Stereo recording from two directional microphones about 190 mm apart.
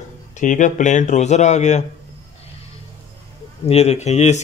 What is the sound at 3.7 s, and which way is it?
Speech, 35° left (ahead or behind).